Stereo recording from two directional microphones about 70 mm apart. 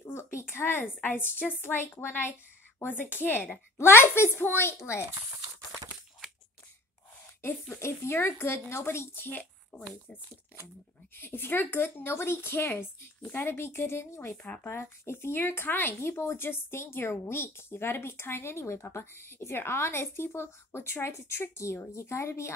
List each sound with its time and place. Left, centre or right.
0.0 s a woman's voice: left
7.8 s speech: left
11.1 s speech: left
14.3 s a woman's voice: left
14.7 s speech: left